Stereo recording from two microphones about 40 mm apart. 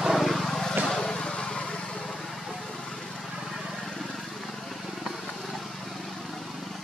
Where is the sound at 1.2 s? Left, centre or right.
Left.